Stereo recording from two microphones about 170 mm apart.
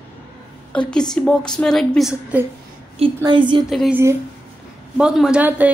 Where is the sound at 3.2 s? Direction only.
30° right (ahead or behind).